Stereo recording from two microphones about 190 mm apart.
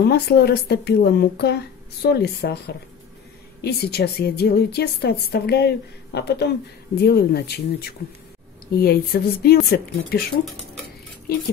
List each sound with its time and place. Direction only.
0.0 s speech: 55° left (ahead or behind)